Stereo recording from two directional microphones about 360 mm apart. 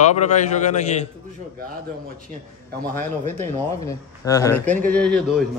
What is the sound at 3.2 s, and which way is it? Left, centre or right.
Speech, centre.